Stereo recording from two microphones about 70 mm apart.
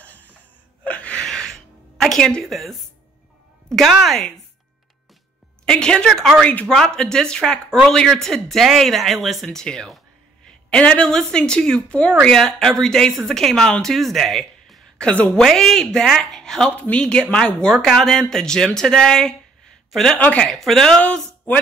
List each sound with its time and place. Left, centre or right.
0.0 s gasp: left
1.2 s music: centre
3.6 s speech: centre
5.7 s a woman's voice: centre
6.4 s speech: centre
6.7 s a woman's voice: centre
15.0 s a woman's voice: centre
15.4 s speech: centre
16.7 s a woman's voice: centre
20.2 s a woman's voice: centre
20.5 s a woman's voice: centre
21.0 s speech: centre